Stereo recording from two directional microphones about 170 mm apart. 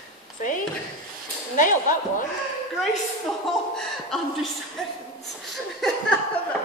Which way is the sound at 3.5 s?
Centre (ahead or behind).